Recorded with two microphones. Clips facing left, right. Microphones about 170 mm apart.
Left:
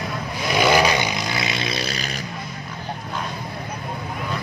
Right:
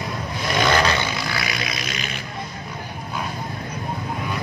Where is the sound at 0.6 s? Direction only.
10° left (ahead or behind); by 2.1 s 35° left (ahead or behind).